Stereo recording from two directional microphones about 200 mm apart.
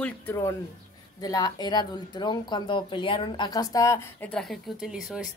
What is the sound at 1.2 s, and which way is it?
Speech, 20° left (ahead or behind).